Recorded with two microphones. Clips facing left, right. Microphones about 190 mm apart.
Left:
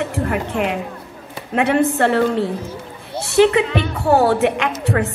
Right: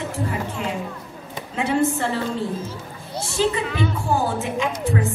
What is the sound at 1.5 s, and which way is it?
A woman's voice, 65° left (ahead or behind).